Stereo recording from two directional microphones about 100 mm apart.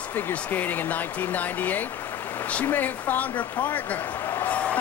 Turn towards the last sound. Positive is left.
turn(degrees=15)  # may be behind; listen again after turning